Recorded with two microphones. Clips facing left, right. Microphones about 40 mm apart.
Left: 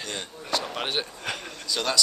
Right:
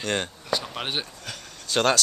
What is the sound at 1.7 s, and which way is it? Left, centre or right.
Speech, right.